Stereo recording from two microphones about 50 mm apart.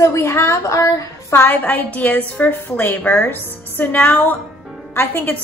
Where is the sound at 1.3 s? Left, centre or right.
Left.